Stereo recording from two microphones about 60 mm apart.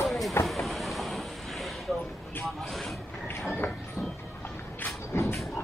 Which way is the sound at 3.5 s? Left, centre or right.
Left.